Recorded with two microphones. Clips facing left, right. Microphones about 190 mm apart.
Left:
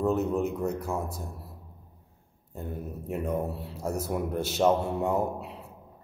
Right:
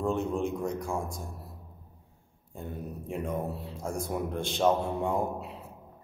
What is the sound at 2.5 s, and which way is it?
A man's voice, centre (ahead or behind).